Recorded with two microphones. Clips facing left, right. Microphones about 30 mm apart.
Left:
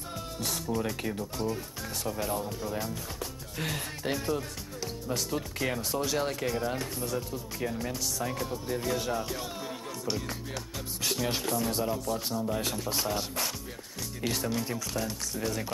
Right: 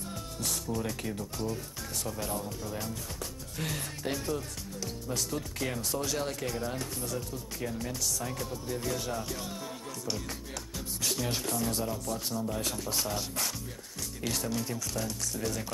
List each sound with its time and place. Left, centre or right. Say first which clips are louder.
0.4 s speech: left 2 dB; centre
11.0 s speech: left 2 dB; centre